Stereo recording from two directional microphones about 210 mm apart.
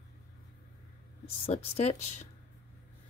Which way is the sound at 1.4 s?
30° left (ahead or behind).